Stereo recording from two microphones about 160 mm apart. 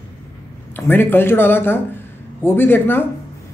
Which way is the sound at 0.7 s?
15° left (ahead or behind).